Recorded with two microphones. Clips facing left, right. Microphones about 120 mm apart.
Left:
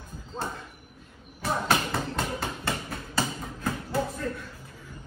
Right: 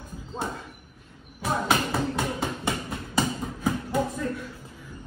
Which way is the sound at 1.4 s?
5° right (ahead or behind).